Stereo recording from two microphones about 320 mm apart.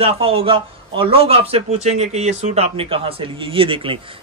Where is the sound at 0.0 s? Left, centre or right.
Centre.